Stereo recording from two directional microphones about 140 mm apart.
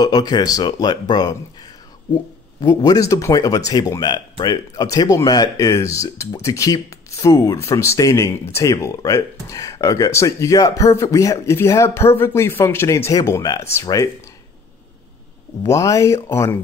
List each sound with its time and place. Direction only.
0.0 s speech: 30° left (ahead or behind)
15.6 s speech: 20° left (ahead or behind)